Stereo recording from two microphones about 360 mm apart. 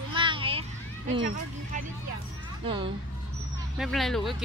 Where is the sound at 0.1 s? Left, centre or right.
Centre.